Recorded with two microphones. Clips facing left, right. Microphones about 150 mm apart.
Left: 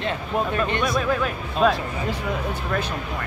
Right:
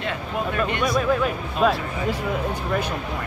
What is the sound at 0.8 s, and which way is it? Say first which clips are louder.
Speech: right 2 dB; centre (ahead or behind).